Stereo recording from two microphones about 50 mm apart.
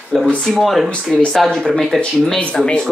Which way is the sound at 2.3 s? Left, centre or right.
Centre.